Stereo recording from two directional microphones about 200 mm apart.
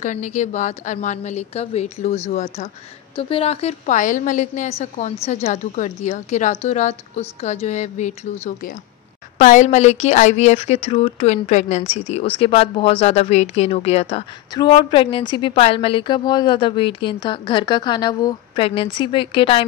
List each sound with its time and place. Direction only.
0.0 s a woman's voice: 35° left (ahead or behind)